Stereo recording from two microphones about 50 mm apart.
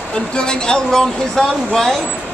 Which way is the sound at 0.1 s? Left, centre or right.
Centre.